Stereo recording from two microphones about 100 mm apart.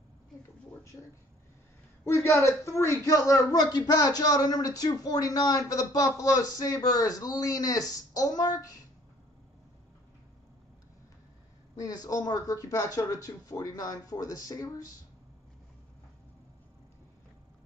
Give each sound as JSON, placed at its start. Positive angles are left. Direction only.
{"t": 2.0, "sound": "speech", "side_deg": 25}
{"t": 11.8, "sound": "speech", "side_deg": 40}